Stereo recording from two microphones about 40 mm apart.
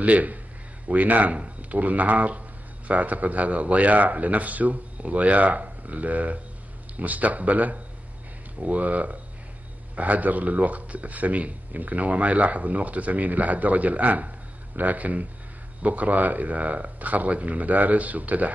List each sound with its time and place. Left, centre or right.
0.0 s a man's voice: right